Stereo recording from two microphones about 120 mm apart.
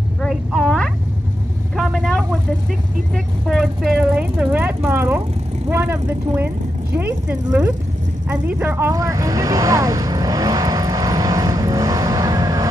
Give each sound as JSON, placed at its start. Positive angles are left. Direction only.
{"t": 0.2, "sound": "frog", "side_deg": 5}
{"t": 1.8, "sound": "vehicle", "side_deg": 5}
{"t": 3.4, "sound": "a woman's voice", "side_deg": -5}
{"t": 8.3, "sound": "vehicle", "side_deg": -15}